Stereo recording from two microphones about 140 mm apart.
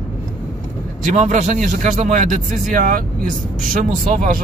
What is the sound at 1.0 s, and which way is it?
A man's voice, 55° right (ahead or behind).